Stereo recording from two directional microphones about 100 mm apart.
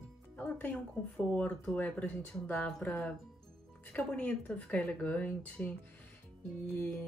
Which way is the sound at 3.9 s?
10° left (ahead or behind).